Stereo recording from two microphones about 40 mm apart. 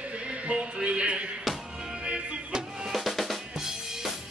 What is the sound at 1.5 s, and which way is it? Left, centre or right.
Music, centre.